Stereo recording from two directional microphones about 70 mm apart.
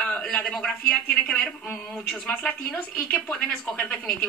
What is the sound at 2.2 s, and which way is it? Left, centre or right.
Speech, centre.